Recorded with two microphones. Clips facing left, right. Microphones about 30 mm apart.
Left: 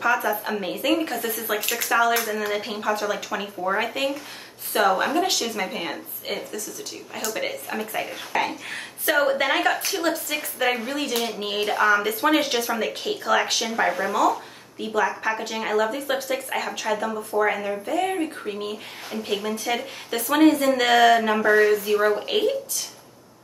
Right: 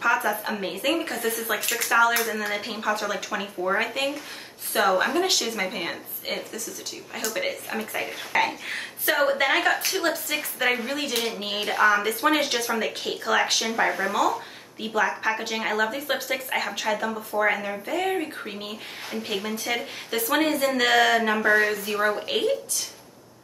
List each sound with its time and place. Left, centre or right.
0.0 s speech: centre
1.2 s speech: right
1.7 s speech: centre
8.3 s speech: right
8.6 s speech: centre
15.3 s speech: right
15.6 s speech: centre
19.2 s speech: centre